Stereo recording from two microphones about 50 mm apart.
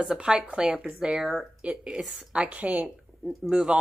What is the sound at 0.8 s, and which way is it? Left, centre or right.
Speech, centre.